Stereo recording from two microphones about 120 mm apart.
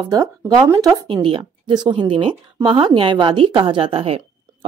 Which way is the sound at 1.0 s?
45° right (ahead or behind).